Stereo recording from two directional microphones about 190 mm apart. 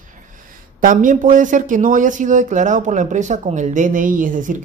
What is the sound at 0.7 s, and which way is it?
Speech, 45° right (ahead or behind).